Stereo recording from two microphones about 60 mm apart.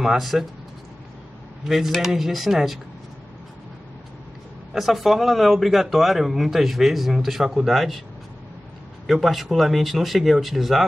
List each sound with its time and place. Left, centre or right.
0.0 s speech: centre
1.7 s speech: centre
4.7 s speech: centre
9.0 s speech: centre